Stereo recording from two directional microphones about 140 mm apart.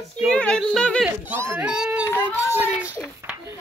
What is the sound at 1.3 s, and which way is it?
Speech, 15° right (ahead or behind).